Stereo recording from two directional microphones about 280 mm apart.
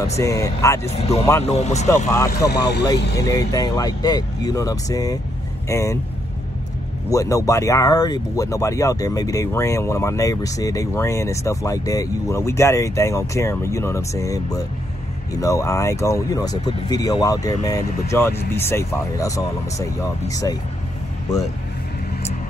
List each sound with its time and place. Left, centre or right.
0.2 s speech: centre
0.9 s speech: left
2.3 s speech: left
2.9 s speech: centre
7.1 s speech: centre